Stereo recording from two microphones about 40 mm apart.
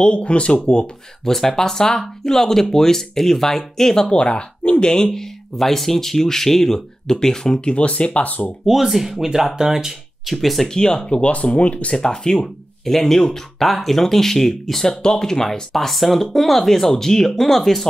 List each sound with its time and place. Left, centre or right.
0.0 s speech: left
1.2 s speech: centre
7.7 s speech: left
8.6 s speech: centre
10.7 s speech: centre
11.2 s speech: left
11.9 s speech: centre